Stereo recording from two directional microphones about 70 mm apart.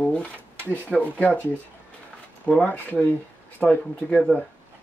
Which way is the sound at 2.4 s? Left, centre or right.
Left.